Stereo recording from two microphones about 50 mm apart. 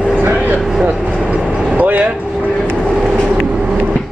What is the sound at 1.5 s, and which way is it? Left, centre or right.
Vehicle, centre.